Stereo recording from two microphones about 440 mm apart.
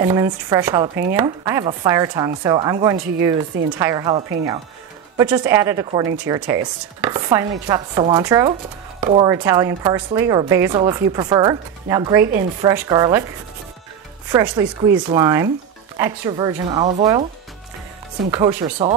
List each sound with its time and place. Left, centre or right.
0.0 s speech: centre
14.3 s speech: centre
18.3 s speech: centre